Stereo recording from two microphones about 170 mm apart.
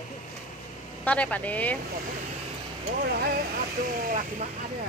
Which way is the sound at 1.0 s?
10° left (ahead or behind).